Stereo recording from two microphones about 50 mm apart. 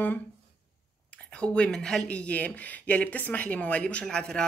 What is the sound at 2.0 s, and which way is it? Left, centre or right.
Speech, left.